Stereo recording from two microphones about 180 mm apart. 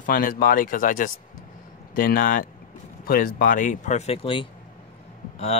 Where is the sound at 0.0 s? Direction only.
50° left (ahead or behind).